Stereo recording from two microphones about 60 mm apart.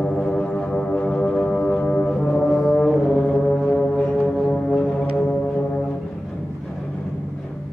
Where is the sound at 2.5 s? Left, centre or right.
Centre.